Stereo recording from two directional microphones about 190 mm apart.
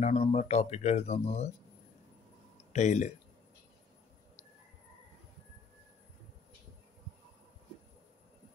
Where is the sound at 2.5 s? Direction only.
35° left (ahead or behind).